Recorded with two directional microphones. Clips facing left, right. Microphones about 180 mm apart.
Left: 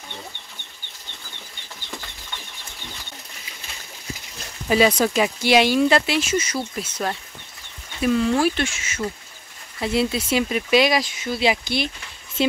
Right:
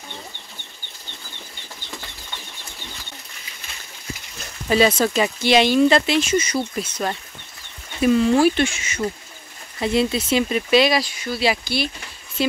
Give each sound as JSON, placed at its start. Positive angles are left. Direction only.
{"t": 4.6, "sound": "speech", "side_deg": 10}